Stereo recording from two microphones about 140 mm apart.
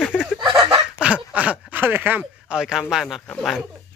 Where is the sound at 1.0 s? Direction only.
10° right (ahead or behind).